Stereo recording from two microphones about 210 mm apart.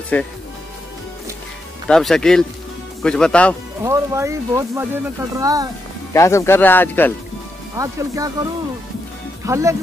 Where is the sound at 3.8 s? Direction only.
15° right (ahead or behind).